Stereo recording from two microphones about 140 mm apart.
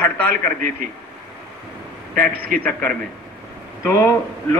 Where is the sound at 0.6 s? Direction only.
75° right (ahead or behind).